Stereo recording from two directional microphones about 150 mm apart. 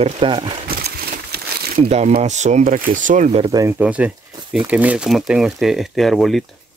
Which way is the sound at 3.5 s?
20° right (ahead or behind).